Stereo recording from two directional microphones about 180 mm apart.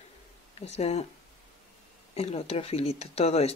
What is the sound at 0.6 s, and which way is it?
Speech, 35° left (ahead or behind).